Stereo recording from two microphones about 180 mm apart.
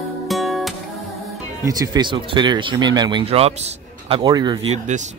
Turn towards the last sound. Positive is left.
turn(degrees=-25)  # may be behind; listen again after turning